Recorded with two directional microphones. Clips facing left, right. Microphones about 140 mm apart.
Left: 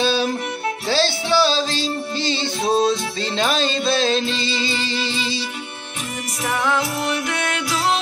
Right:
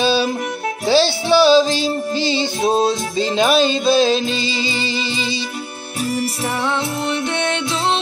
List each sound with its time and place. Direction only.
0.0 s music: 5° right (ahead or behind)
6.6 s music: 30° right (ahead or behind)